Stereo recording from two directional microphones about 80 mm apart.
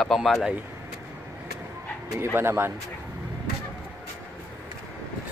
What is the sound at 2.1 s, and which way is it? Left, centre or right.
Speech, right.